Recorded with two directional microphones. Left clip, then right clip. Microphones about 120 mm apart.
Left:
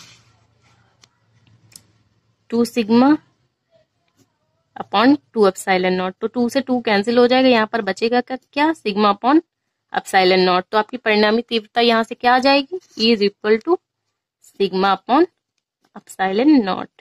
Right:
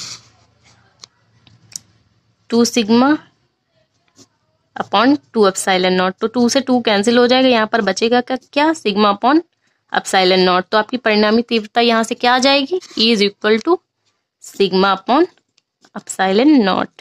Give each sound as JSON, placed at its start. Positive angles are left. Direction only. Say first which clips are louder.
{"t": 0.1, "sound": "a sound", "louder": "right 15 dB", "side_deg": -35}
{"t": 2.4, "sound": "speech", "louder": "right 4 dB", "side_deg": -40}
{"t": 4.7, "sound": "speech", "louder": "right 2 dB", "side_deg": -40}